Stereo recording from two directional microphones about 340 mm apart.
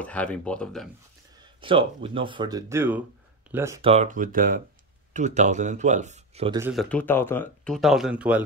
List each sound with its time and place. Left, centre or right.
0.0 s speech: centre
1.4 s speech: centre
6.7 s speech: centre